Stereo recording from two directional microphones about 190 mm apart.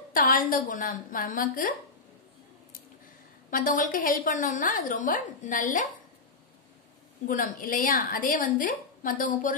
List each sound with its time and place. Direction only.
0.1 s a woman's voice: 45° left (ahead or behind)
3.4 s a woman's voice: 45° left (ahead or behind)
7.2 s a woman's voice: 45° left (ahead or behind)